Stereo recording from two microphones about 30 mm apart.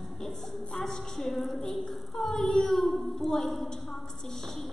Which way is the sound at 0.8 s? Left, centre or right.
Centre.